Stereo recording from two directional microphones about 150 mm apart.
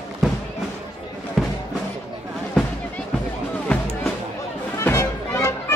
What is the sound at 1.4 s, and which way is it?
Music, centre (ahead or behind).